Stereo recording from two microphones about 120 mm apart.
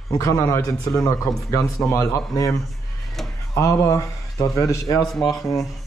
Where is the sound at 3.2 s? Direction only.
Centre (ahead or behind).